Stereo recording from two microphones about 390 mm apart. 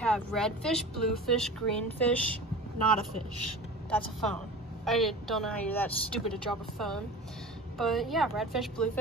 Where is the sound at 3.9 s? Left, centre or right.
Centre.